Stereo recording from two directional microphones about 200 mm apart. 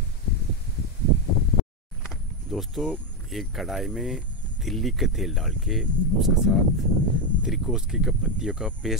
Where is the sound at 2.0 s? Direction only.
Centre (ahead or behind).